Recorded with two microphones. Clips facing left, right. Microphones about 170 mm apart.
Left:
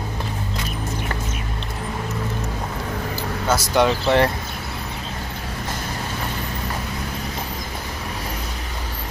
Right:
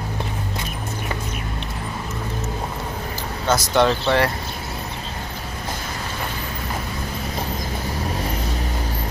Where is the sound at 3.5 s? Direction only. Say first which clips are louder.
Right 1 dB; 10° left (ahead or behind).